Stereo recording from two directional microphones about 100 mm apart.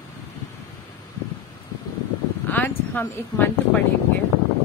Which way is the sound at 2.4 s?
20° left (ahead or behind).